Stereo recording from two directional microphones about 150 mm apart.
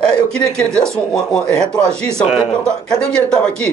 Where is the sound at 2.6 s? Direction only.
5° left (ahead or behind).